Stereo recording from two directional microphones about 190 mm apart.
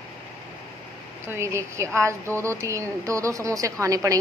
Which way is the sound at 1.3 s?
15° right (ahead or behind).